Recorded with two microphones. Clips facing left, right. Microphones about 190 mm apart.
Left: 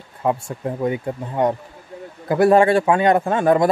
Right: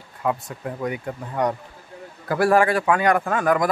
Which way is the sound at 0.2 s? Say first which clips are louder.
Left 4 dB; 30° left (ahead or behind).